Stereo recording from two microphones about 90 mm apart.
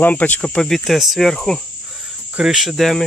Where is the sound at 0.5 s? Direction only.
5° left (ahead or behind).